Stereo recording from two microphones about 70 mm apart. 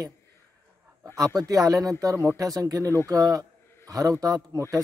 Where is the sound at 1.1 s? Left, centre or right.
Right.